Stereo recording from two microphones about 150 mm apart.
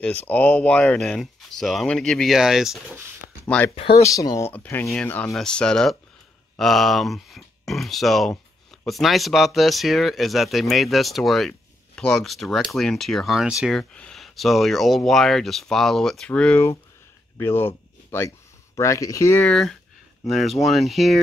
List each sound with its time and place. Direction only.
0.0 s speech: 10° left (ahead or behind)
3.4 s speech: 10° left (ahead or behind)
4.0 s speech: 20° left (ahead or behind)
20.2 s speech: centre (ahead or behind)